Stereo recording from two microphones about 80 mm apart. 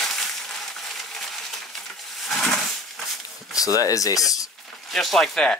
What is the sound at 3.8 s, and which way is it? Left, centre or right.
Speech, left.